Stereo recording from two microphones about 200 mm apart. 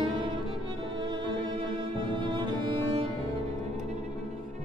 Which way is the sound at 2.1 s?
25° right (ahead or behind).